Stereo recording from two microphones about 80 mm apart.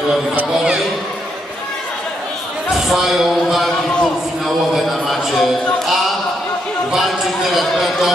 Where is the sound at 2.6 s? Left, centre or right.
Centre.